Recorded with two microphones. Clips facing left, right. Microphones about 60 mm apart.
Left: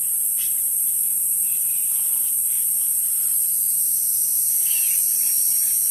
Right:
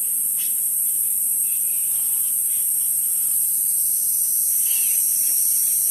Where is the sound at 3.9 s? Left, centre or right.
Left.